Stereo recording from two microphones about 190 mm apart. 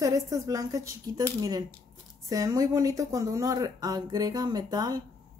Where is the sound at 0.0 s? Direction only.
20° right (ahead or behind).